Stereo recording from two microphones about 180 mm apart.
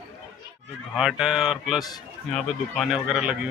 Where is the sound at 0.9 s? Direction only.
Centre (ahead or behind).